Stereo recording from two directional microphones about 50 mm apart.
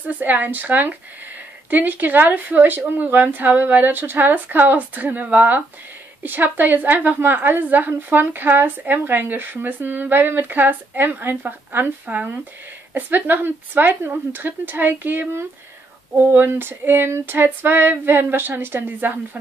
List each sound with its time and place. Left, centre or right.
0.2 s a woman's voice: right
16.3 s female singing: right